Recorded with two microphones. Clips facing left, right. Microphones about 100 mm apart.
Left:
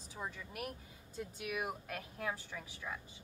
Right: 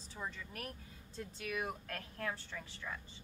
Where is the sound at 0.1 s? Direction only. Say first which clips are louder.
Even; 10° left (ahead or behind).